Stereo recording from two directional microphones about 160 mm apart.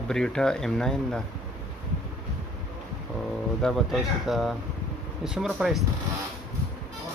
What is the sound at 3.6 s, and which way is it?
Speech, centre (ahead or behind).